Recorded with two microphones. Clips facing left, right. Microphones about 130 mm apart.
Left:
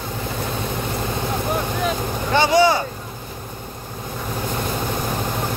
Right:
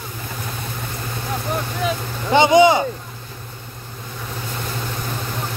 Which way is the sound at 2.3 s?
20° right (ahead or behind).